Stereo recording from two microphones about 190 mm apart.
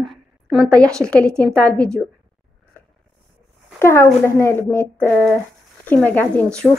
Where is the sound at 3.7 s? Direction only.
15° left (ahead or behind).